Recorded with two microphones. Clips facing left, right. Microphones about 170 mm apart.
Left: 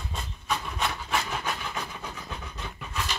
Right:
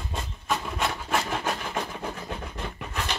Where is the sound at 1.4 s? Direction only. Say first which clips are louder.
Right 4 dB; 50° right (ahead or behind).